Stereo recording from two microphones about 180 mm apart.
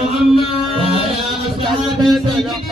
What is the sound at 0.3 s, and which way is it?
Music, 30° left (ahead or behind).